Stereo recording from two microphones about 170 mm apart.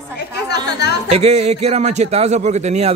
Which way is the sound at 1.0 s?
35° right (ahead or behind).